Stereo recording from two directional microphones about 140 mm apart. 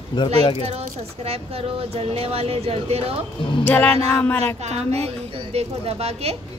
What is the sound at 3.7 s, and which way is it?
Music, 10° left (ahead or behind).